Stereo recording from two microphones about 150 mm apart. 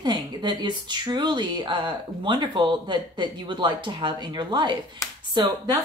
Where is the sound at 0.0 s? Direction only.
30° right (ahead or behind).